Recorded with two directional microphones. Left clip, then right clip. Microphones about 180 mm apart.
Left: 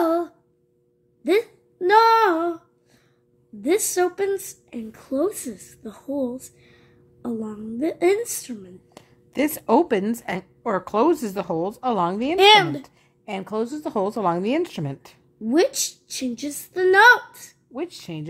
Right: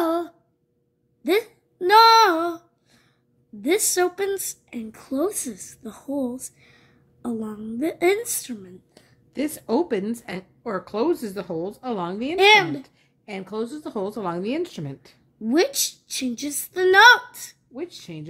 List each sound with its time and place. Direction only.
0.0 s a sound: 5° right (ahead or behind)
3.6 s a woman's voice: 5° right (ahead or behind)
8.9 s a woman's voice: 40° left (ahead or behind)
12.4 s speech: centre (ahead or behind)
12.8 s a woman's voice: 35° left (ahead or behind)
15.4 s a woman's voice: 5° right (ahead or behind)
17.7 s a woman's voice: 35° left (ahead or behind)